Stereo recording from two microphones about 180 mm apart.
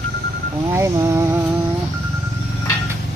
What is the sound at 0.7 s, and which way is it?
Speech, 15° right (ahead or behind).